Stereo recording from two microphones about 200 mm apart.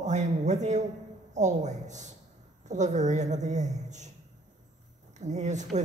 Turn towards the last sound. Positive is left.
turn(degrees=-35)  # may be behind; listen again after turning